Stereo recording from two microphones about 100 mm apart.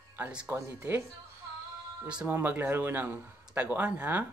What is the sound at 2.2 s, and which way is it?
Speech, 20° right (ahead or behind).